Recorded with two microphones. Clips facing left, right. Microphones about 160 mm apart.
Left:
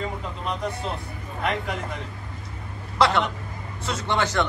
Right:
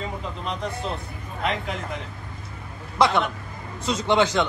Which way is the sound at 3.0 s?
15° right (ahead or behind).